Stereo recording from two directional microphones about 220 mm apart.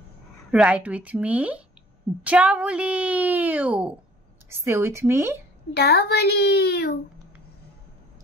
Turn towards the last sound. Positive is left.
turn(degrees=45)  # may be behind; listen again after turning